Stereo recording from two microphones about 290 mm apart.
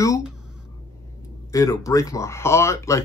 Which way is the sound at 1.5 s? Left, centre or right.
Centre.